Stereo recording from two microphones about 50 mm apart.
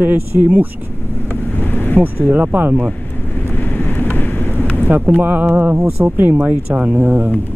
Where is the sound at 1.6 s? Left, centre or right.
Left.